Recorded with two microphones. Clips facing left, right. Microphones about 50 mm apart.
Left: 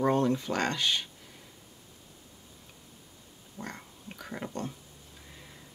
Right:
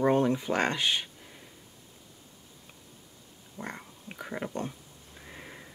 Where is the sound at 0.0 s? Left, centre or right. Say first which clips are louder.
Right 1 dB; centre.